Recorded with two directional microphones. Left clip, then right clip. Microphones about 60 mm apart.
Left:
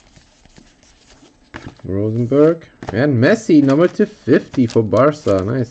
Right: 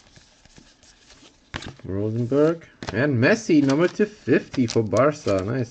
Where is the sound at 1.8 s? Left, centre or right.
Left.